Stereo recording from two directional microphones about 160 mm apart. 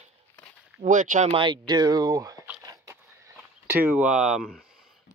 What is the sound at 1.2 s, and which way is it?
Speech, 30° right (ahead or behind).